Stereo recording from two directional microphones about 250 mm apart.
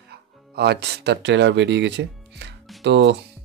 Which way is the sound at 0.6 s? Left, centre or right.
Right.